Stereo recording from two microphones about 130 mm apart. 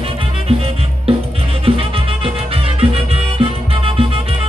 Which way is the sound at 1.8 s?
50° right (ahead or behind).